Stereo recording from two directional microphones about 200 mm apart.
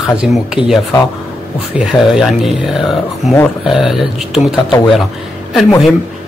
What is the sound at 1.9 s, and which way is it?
Speech, centre (ahead or behind).